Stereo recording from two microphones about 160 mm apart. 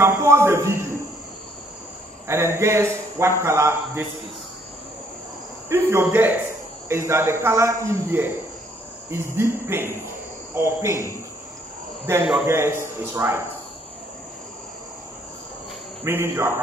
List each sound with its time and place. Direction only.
0.0 s speech: 15° right (ahead or behind)
2.2 s speech: 15° right (ahead or behind)
5.7 s speech: 15° right (ahead or behind)
12.4 s speech: 15° right (ahead or behind)
16.0 s speech: 15° right (ahead or behind)